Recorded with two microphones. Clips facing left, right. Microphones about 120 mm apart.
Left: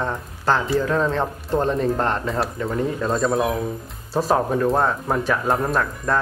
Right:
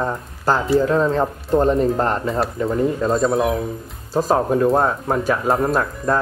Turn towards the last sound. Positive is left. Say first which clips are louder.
# right 3 dB
turn(degrees=0)  # may be behind; listen again after turning